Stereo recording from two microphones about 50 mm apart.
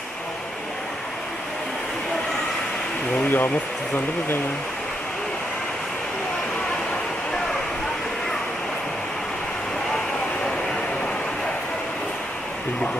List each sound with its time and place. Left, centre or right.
3.3 s speech: left